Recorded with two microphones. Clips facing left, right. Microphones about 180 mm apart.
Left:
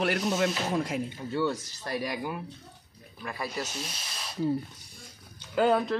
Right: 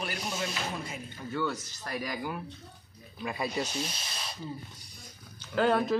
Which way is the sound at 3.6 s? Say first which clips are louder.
Right 2 dB; centre (ahead or behind).